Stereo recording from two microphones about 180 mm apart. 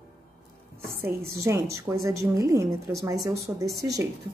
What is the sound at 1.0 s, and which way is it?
Speech, 60° right (ahead or behind).